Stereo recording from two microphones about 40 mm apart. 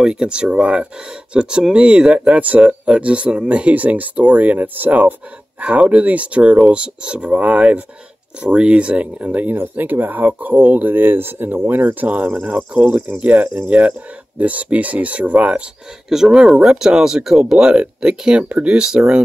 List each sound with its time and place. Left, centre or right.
0.0 s speech: right
5.6 s speech: right
9.5 s speech: right
16.1 s speech: centre
18.4 s speech: right
18.7 s speech: centre
18.9 s speech: right